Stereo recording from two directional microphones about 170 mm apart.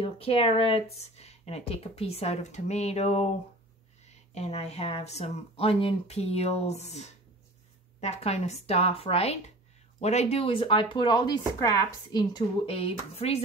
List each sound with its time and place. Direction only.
0.0 s speech: 35° left (ahead or behind)